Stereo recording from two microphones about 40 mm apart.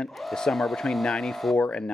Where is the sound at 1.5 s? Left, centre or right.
Left.